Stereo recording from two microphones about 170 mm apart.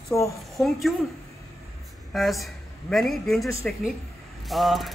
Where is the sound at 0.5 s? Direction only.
Centre (ahead or behind).